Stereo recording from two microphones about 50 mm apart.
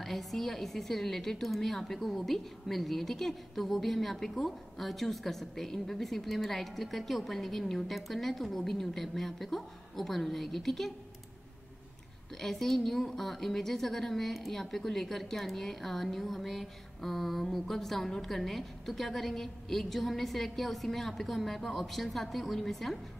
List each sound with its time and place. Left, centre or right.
0.0 s a woman's voice: centre
12.4 s a woman's voice: centre